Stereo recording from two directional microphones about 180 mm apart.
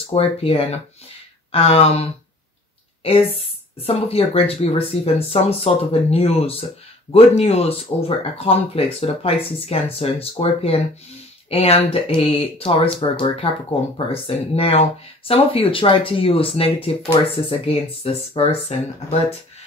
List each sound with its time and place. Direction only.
0.1 s speech: 30° left (ahead or behind)